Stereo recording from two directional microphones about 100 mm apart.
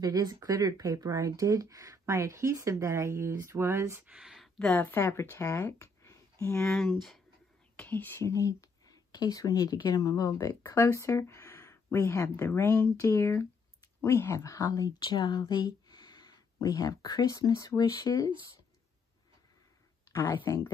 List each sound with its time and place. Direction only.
0.0 s speech: 40° right (ahead or behind)
4.0 s speech: 5° right (ahead or behind)
4.6 s speech: 10° left (ahead or behind)
4.8 s speech: 25° left (ahead or behind)
6.6 s speech: 5° left (ahead or behind)
7.7 s speech: 15° left (ahead or behind)
8.3 s speech: 30° left (ahead or behind)
20.1 s a sound: 25° left (ahead or behind)
20.4 s speech: 35° left (ahead or behind)